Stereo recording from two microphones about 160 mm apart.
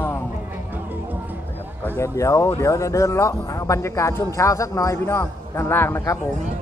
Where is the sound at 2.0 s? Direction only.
20° left (ahead or behind).